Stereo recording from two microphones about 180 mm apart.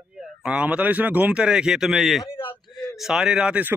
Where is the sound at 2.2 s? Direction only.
30° left (ahead or behind).